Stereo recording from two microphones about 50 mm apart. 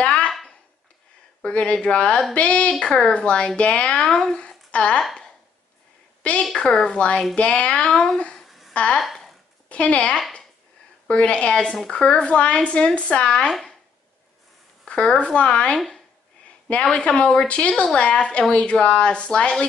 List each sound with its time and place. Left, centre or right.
0.0 s a sound: left
1.4 s speech: left
4.1 s speech: centre
4.4 s speech: left
6.5 s speech: centre
8.4 s a sound: centre
8.7 s speech: left
9.0 s a sound: centre
9.7 s a woman's voice: left
13.5 s speech: centre
14.9 s speech: left
16.9 s speech: left